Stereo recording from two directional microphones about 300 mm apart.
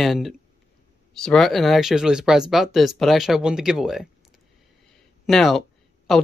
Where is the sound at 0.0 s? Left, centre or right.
Centre.